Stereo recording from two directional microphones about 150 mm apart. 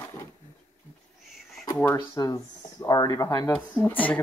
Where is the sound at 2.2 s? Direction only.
20° left (ahead or behind).